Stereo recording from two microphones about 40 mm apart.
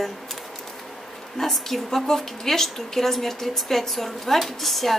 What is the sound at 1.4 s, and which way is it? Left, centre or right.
A woman's voice, centre.